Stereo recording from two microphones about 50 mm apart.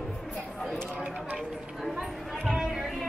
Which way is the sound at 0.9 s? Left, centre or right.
Right.